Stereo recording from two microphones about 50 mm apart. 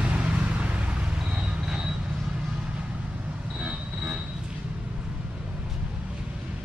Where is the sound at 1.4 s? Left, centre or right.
Centre.